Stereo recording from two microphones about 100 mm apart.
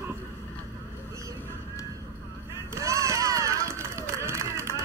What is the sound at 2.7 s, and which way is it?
Run, 30° right (ahead or behind).